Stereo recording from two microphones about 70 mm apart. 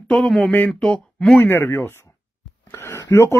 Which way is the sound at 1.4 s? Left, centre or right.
Left.